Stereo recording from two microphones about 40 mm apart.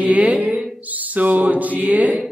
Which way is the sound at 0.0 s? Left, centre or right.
Right.